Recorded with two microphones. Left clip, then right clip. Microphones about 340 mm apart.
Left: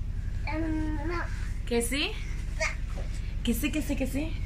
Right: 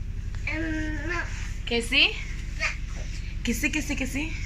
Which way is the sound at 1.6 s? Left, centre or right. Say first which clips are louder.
Right 7 dB; centre.